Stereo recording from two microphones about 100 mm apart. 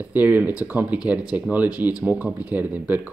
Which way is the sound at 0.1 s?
20° right (ahead or behind).